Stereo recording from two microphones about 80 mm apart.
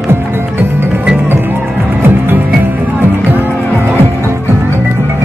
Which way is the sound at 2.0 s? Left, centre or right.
Right.